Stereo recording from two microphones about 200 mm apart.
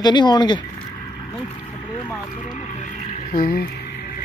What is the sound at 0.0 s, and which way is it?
Speech, 20° left (ahead or behind).